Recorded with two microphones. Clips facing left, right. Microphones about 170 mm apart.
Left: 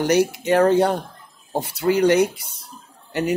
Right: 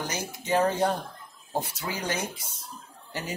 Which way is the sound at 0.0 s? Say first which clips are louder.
Left 16 dB; 75° left (ahead or behind).